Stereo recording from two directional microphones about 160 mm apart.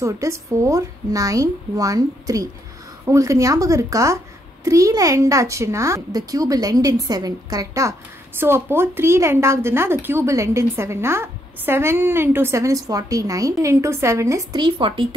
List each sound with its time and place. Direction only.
0.0 s a child's voice: 20° right (ahead or behind)